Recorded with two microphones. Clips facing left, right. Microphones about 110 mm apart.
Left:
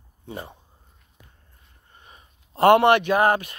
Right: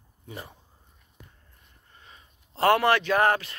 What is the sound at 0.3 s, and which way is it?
Speech, 25° left (ahead or behind).